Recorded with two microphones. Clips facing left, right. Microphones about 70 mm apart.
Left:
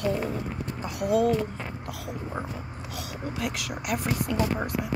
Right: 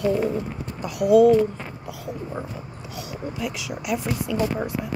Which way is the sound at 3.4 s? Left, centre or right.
Left.